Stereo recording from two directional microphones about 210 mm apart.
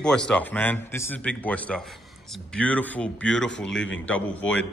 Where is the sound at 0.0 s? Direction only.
5° left (ahead or behind).